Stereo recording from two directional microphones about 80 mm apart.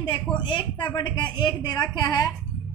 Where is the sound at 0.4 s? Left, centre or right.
Left.